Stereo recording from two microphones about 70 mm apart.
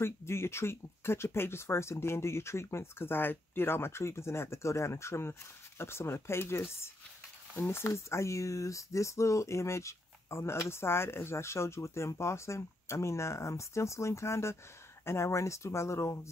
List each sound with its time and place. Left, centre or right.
0.0 s speech: left